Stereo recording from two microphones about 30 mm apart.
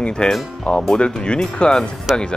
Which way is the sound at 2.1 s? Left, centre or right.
Centre.